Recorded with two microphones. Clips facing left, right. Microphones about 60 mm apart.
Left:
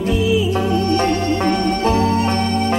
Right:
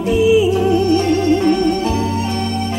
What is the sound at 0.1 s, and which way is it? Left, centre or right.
Music, centre.